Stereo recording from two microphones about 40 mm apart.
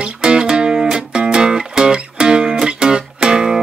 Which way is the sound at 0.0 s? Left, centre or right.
Right.